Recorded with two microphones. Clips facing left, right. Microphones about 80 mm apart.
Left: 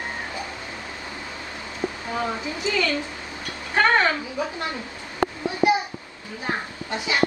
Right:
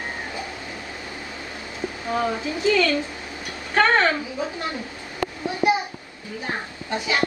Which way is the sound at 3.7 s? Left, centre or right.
Left.